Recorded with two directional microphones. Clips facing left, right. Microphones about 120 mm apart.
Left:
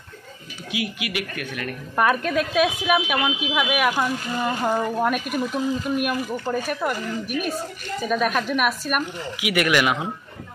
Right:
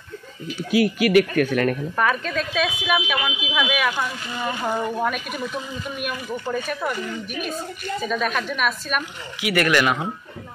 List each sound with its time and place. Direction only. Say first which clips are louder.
0.7 s speech: right 10 dB; 40° right (ahead or behind)
2.0 s speech: left 7 dB; 10° left (ahead or behind)